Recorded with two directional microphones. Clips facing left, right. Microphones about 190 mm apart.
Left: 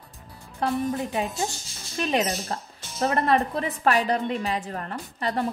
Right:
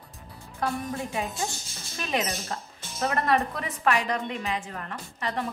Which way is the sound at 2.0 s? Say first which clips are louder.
Left 5 dB; 30° left (ahead or behind).